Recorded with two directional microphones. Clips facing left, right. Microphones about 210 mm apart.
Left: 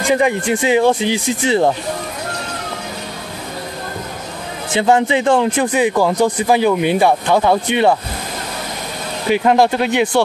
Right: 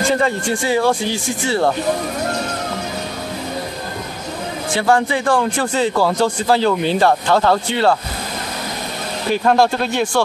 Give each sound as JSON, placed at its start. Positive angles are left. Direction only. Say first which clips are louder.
{"t": 0.0, "sound": "speech", "louder": "left 2 dB", "side_deg": 15}
{"t": 4.7, "sound": "speech", "louder": "left 3 dB", "side_deg": 20}
{"t": 9.3, "sound": "speech", "louder": "left 2 dB", "side_deg": 15}